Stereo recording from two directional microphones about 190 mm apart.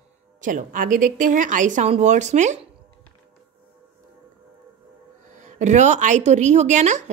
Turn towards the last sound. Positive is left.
turn(degrees=-40)  # may be behind; listen again after turning